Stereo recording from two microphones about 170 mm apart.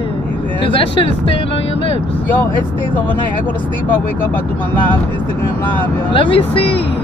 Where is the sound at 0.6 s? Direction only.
30° left (ahead or behind).